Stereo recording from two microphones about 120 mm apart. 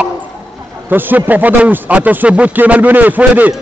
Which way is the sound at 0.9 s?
15° right (ahead or behind).